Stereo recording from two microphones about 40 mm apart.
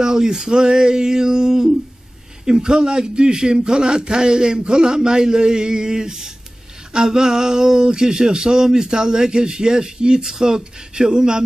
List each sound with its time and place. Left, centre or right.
0.0 s a man's voice: centre